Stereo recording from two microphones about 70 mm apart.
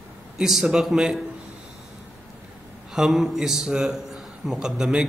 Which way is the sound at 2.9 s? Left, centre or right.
Centre.